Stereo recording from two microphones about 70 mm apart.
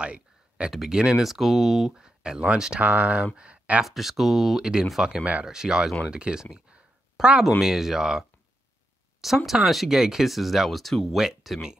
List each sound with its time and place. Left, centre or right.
0.0 s a sound: centre
0.7 s speech: centre
2.0 s speech: centre
3.8 s speech: centre
5.0 s speech: centre
9.5 s speech: centre